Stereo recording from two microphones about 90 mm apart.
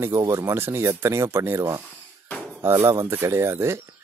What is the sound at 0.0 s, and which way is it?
Speech, 35° right (ahead or behind).